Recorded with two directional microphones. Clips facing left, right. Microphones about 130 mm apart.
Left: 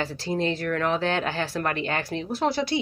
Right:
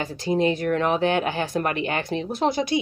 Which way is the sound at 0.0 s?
15° right (ahead or behind).